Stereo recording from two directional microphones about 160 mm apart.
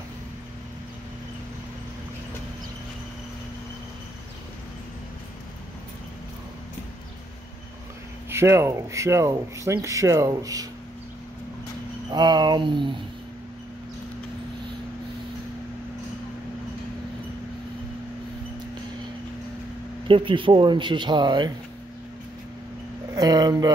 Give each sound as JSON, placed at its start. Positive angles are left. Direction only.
{"t": 8.3, "sound": "speech", "side_deg": -15}
{"t": 12.1, "sound": "speech", "side_deg": -25}
{"t": 20.1, "sound": "speech", "side_deg": -30}
{"t": 23.1, "sound": "speech", "side_deg": -25}